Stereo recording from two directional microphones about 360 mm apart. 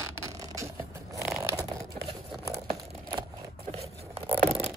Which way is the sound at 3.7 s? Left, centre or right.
Centre.